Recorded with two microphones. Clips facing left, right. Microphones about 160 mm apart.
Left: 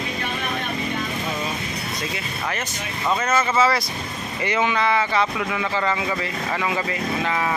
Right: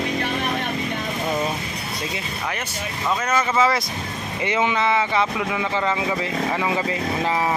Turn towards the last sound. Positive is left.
turn(degrees=-15)  # may be behind; listen again after turning